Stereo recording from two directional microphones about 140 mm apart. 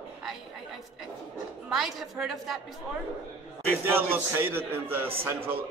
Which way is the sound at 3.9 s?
15° right (ahead or behind).